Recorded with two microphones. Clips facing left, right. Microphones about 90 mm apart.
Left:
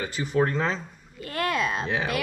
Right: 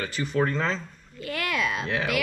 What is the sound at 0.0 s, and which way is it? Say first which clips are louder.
Speech: left 1 dB; 5° left (ahead or behind).